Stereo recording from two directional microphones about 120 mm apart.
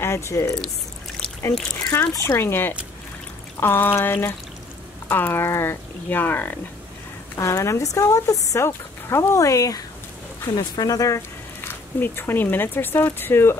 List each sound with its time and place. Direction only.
0.0 s speech: 25° left (ahead or behind)
1.9 s speech: 25° left (ahead or behind)
7.3 s speech: 25° left (ahead or behind)